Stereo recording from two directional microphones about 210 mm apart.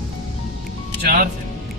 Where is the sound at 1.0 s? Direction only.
45° right (ahead or behind).